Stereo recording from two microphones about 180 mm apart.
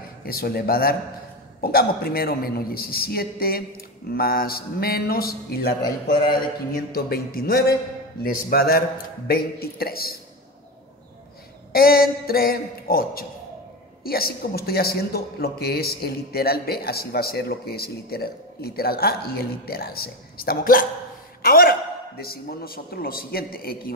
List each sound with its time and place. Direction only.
0.3 s a man's voice: 60° left (ahead or behind)
6.9 s a man's voice: 55° left (ahead or behind)
11.7 s a man's voice: 55° left (ahead or behind)